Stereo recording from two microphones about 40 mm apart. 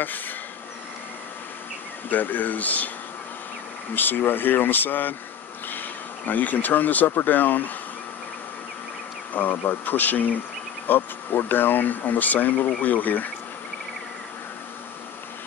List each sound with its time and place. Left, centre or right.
2.0 s speech: left
3.9 s speech: left
9.3 s speech: left